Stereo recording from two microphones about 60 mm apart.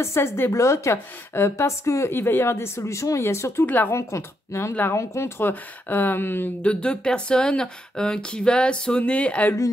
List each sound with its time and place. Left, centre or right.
0.0 s speech: left
0.6 s speech: left
2.0 s speech: left
3.6 s speech: left
3.9 s speech: left
5.4 s speech: left
6.6 s speech: centre